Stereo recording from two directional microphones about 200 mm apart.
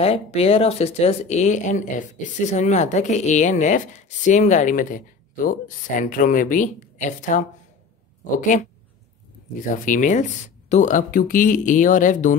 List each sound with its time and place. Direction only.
0.0 s speech: 30° left (ahead or behind)
9.8 s speech: 40° left (ahead or behind)